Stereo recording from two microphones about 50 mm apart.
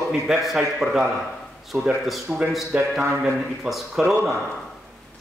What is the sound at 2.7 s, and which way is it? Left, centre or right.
Speech, centre.